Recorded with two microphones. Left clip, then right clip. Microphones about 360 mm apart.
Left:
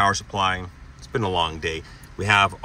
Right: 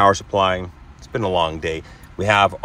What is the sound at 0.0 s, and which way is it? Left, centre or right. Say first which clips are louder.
Speech: right 5 dB; centre.